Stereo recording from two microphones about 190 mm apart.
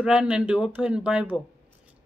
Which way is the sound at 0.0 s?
5° right (ahead or behind).